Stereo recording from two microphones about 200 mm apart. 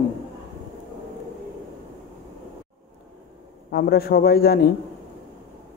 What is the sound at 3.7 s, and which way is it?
Speech, 50° left (ahead or behind).